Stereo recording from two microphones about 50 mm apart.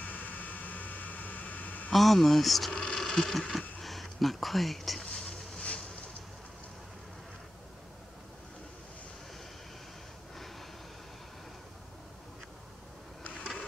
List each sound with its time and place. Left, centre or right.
0.0 s vehicle: left
1.9 s speech: centre
3.8 s a sound: centre
5.6 s boat: centre